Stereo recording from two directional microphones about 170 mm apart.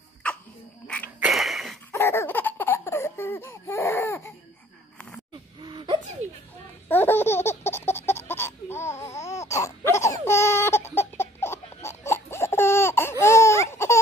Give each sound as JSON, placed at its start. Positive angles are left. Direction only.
{"t": 0.2, "sound": "cough", "side_deg": 5}
{"t": 0.8, "sound": "sneeze", "side_deg": 5}
{"t": 1.2, "sound": "a sound", "side_deg": 0}
{"t": 1.9, "sound": "laughter", "side_deg": 15}
{"t": 5.6, "sound": "a sound", "side_deg": -25}
{"t": 6.9, "sound": "laughter", "side_deg": 10}
{"t": 8.3, "sound": "baby cry", "side_deg": 15}